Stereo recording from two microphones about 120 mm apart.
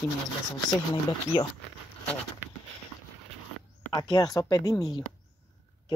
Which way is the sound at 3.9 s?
40° left (ahead or behind).